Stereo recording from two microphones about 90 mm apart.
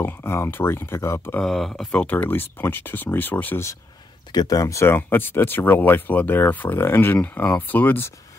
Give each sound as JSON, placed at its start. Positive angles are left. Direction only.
{"t": 0.0, "sound": "speech", "side_deg": 25}
{"t": 1.4, "sound": "speech", "side_deg": 5}
{"t": 1.9, "sound": "speech", "side_deg": 15}
{"t": 4.3, "sound": "speech", "side_deg": 45}